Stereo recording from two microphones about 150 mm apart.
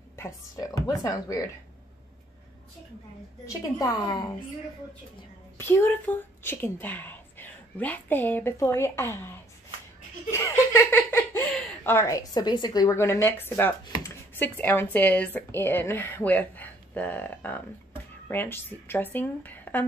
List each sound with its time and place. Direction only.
0.1 s a woman's voice: 20° left (ahead or behind)
3.4 s a woman's voice: 25° left (ahead or behind)
5.6 s a woman's voice: 15° left (ahead or behind)
10.3 s laughter: 15° left (ahead or behind)
11.8 s a woman's voice: 15° left (ahead or behind)